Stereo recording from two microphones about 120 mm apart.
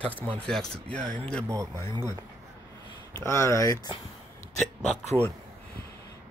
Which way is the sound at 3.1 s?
25° left (ahead or behind).